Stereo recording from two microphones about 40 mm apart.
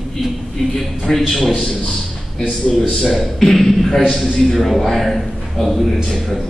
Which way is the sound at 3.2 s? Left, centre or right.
Centre.